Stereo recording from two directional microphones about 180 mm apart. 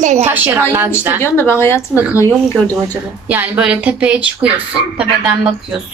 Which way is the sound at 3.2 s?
10° right (ahead or behind).